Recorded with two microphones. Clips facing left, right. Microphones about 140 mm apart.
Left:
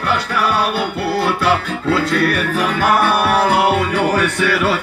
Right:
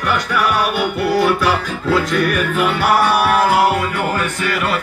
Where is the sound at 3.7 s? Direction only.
85° left.